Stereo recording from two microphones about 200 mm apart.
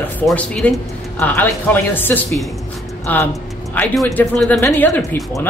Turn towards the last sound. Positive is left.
turn(degrees=10)  # may be behind; listen again after turning